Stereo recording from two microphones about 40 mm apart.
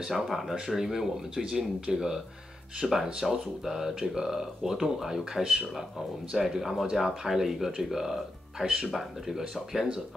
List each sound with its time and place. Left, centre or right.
0.1 s speech: centre